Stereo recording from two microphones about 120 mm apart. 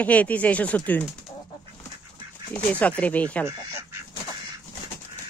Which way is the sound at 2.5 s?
10° left (ahead or behind).